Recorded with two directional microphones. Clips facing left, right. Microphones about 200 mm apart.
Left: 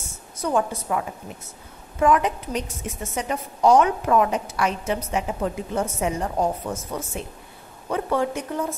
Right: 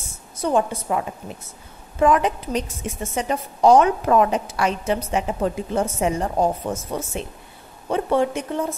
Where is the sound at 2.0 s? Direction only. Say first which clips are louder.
Right 2 dB; 30° right (ahead or behind).